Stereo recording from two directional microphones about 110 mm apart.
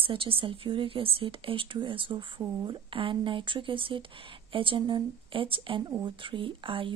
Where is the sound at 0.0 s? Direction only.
55° right (ahead or behind).